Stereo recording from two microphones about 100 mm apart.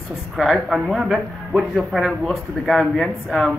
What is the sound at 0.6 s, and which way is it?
Speech, 5° right (ahead or behind).